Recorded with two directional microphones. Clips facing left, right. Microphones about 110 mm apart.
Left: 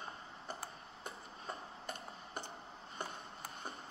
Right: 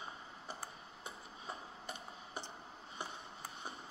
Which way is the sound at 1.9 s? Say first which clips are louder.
Left 1 dB; 50° left (ahead or behind).